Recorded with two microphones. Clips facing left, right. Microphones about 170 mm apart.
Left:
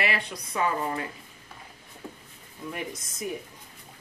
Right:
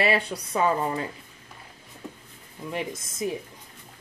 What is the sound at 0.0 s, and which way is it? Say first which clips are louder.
Speech: right 6 dB; 30° right (ahead or behind).